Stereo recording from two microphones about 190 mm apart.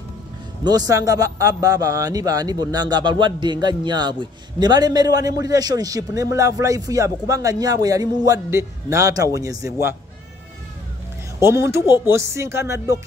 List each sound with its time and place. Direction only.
0.7 s speech: 20° right (ahead or behind)
11.3 s speech: 15° right (ahead or behind)